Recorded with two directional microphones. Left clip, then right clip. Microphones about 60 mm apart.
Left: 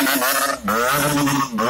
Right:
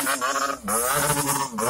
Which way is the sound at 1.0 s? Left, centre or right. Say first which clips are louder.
Left 5 dB; right.